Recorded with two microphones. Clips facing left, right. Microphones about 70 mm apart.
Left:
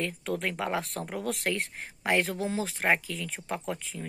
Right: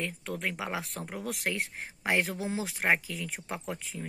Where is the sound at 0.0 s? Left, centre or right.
Centre.